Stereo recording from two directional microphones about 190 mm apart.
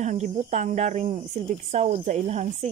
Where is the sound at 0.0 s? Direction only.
40° right (ahead or behind).